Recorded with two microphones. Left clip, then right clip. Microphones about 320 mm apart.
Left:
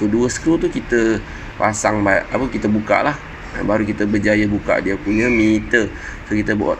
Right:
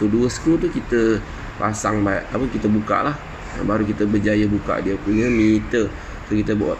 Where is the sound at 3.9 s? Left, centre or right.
Centre.